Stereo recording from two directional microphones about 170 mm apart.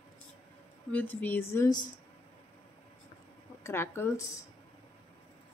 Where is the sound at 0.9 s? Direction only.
10° left (ahead or behind).